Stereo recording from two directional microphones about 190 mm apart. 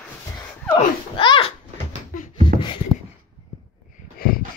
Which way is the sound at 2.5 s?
25° left (ahead or behind).